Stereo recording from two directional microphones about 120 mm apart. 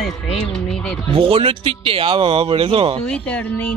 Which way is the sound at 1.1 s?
50° right (ahead or behind).